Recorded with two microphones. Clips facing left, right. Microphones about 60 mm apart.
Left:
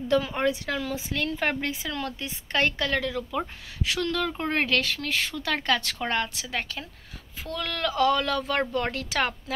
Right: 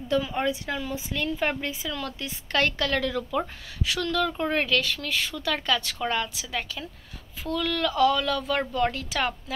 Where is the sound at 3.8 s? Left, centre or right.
Left.